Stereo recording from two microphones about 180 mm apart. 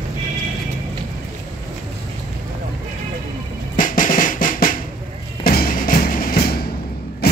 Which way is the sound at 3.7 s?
50° left (ahead or behind).